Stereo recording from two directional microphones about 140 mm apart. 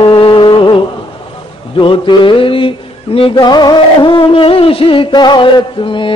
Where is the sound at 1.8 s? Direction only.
35° left (ahead or behind).